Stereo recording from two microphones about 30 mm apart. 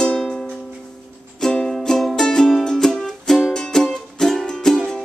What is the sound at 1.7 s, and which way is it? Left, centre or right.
Music, centre.